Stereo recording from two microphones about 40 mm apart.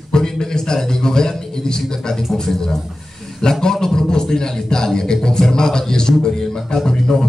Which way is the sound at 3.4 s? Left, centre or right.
Centre.